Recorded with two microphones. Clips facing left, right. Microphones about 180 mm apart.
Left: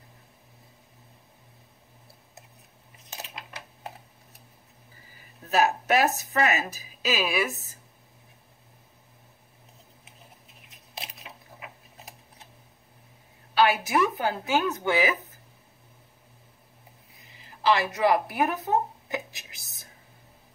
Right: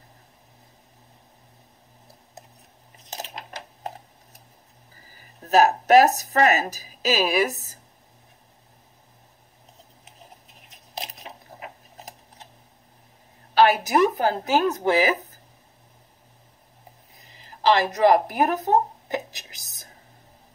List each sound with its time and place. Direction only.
3.1 s coin: 40° right (ahead or behind)
5.0 s speech: 40° right (ahead or behind)
10.7 s squish: 40° right (ahead or behind)
13.6 s speech: 40° right (ahead or behind)
17.1 s a sound: 40° right (ahead or behind)